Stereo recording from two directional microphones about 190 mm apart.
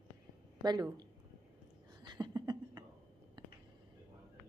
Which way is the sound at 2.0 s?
20° right (ahead or behind).